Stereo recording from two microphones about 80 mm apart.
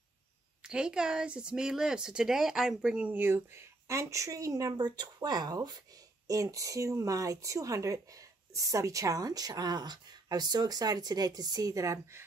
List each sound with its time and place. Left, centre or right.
0.7 s speech: centre
3.2 s speech: right
6.2 s speech: right